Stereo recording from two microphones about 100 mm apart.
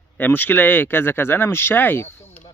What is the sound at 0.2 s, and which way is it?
Speech, 20° left (ahead or behind).